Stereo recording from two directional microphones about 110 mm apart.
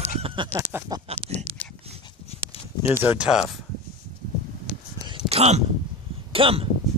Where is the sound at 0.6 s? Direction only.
20° right (ahead or behind).